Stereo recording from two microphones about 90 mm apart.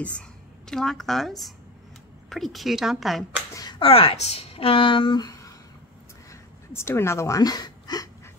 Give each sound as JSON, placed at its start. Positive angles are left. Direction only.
{"t": 0.7, "sound": "a woman's voice", "side_deg": 5}
{"t": 3.8, "sound": "a woman's voice", "side_deg": 90}
{"t": 6.7, "sound": "a woman's voice", "side_deg": 30}